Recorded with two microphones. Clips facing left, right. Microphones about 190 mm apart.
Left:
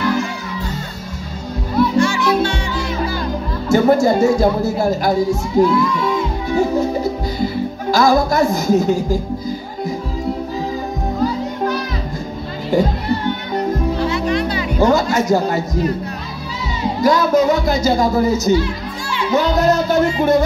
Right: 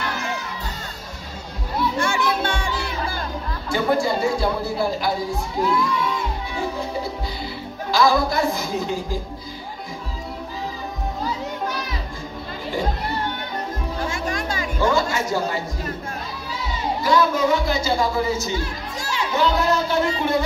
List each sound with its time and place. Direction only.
2.0 s music: 55° right (ahead or behind)
3.6 s speech: 45° left (ahead or behind)
6.5 s music: 45° left (ahead or behind)
7.9 s speech: 45° left (ahead or behind)
12.7 s music: 40° left (ahead or behind)
13.9 s music: 45° right (ahead or behind)
14.8 s speech: 40° left (ahead or behind)
17.0 s speech: 40° left (ahead or behind)
18.6 s children playing: 40° right (ahead or behind)
19.3 s music: 40° left (ahead or behind)